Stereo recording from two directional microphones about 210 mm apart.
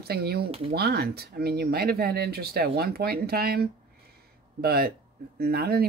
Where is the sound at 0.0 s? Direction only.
50° right (ahead or behind).